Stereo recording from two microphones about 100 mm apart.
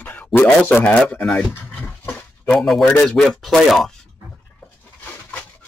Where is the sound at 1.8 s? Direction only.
15° left (ahead or behind).